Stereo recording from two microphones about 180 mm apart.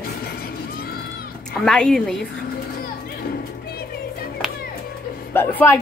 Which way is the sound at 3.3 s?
60° left (ahead or behind).